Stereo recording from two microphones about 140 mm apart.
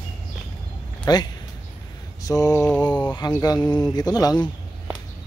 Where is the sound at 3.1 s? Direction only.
30° left (ahead or behind).